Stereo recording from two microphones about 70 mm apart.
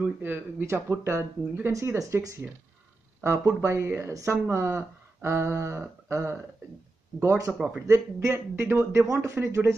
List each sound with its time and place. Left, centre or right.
0.0 s speech: right
3.4 s speech: right
7.5 s speech: centre
7.8 s speech: right